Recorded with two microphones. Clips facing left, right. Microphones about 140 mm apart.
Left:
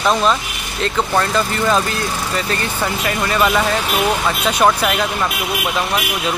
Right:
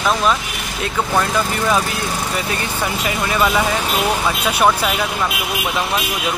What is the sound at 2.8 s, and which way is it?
Speech, 10° right (ahead or behind).